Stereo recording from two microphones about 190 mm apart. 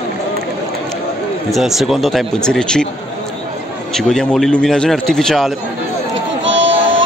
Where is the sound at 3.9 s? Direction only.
5° left (ahead or behind).